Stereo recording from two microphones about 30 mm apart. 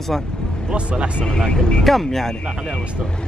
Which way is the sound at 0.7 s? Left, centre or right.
Right.